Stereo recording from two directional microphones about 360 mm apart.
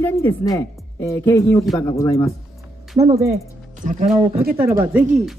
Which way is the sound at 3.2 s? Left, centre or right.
Centre.